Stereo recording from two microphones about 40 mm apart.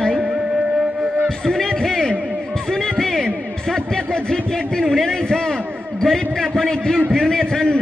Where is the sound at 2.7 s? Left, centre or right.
Centre.